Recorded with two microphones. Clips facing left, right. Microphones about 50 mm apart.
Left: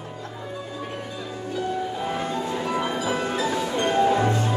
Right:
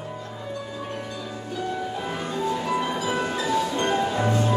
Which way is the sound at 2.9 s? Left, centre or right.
Centre.